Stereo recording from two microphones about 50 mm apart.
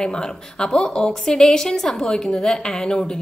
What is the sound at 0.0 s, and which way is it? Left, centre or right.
A woman's voice, centre.